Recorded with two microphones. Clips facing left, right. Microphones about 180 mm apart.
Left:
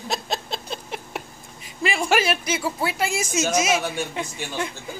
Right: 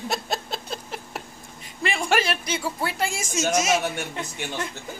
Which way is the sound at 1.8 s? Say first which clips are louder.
Left 2 dB; 5° left (ahead or behind).